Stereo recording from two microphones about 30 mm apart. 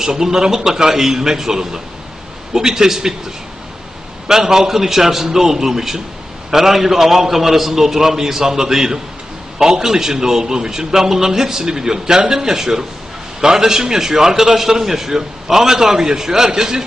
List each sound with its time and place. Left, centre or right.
0.0 s a man's voice: centre
4.3 s a man's voice: centre